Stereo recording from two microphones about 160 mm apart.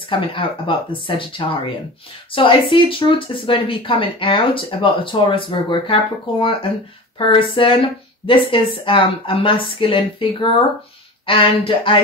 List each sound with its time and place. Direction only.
0.1 s speech: 35° left (ahead or behind)
7.2 s speech: 30° left (ahead or behind)